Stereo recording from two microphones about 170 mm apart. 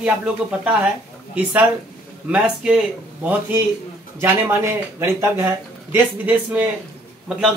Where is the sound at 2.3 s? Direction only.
5° right (ahead or behind).